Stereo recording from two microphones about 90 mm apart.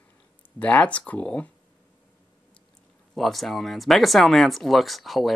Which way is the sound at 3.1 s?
Centre (ahead or behind).